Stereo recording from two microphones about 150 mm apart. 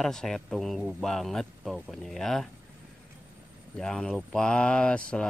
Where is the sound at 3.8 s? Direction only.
5° left (ahead or behind).